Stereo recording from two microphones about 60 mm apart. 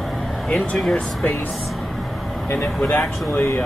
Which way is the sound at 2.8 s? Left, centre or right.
Centre.